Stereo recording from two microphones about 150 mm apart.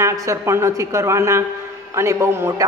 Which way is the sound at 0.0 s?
20° right (ahead or behind).